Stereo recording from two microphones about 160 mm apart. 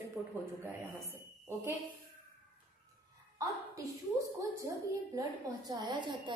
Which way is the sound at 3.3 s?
20° right (ahead or behind).